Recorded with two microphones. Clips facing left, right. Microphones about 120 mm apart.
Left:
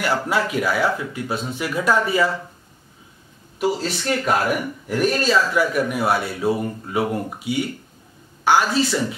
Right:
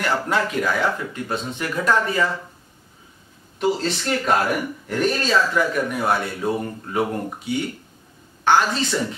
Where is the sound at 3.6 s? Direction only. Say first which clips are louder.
Even; 5° left (ahead or behind).